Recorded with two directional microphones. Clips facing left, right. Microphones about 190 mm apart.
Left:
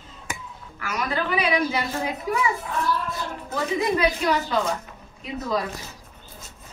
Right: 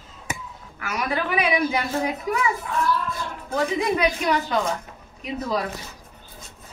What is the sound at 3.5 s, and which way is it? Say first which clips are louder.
Speech: right 1 dB; 15° right (ahead or behind).